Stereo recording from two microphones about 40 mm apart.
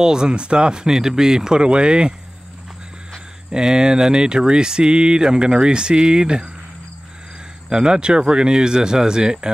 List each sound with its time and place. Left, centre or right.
0.0 s speech: centre
3.5 s speech: right
7.7 s speech: right